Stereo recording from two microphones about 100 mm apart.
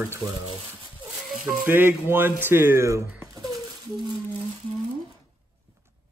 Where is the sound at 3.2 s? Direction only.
35° right (ahead or behind).